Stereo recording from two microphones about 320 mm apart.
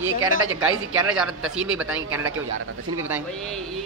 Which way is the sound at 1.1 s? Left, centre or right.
Centre.